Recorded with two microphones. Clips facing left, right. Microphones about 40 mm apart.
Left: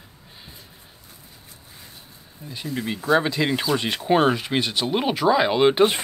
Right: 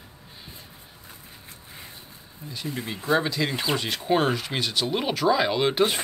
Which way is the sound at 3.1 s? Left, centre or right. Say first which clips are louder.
Left 4 dB; left.